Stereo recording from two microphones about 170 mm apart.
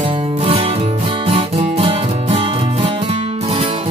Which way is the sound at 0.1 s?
35° right (ahead or behind).